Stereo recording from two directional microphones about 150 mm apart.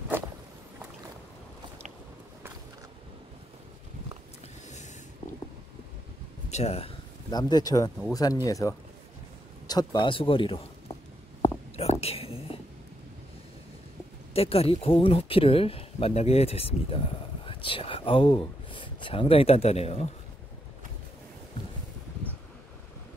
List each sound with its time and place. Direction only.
6.5 s speech: 45° left (ahead or behind)
7.2 s speech: 30° left (ahead or behind)
11.4 s whispering: 45° left (ahead or behind)
14.3 s speech: 40° left (ahead or behind)